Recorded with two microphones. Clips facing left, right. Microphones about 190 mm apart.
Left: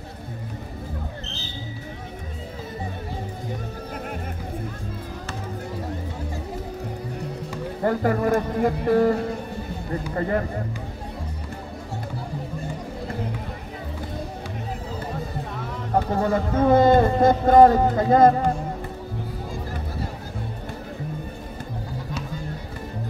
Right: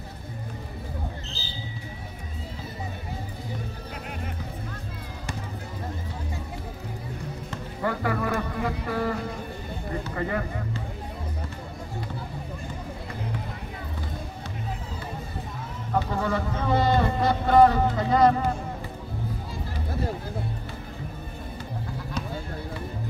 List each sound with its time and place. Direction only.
7.8 s a man's voice: 40° left (ahead or behind)
15.9 s a man's voice: 45° left (ahead or behind)